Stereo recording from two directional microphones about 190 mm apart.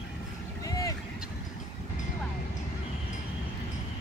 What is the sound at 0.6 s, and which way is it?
Boat, 20° left (ahead or behind).